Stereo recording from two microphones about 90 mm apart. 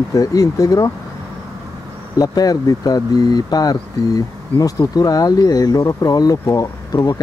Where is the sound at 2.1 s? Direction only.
45° left (ahead or behind).